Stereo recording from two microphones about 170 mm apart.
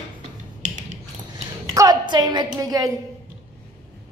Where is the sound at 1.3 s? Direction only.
20° right (ahead or behind).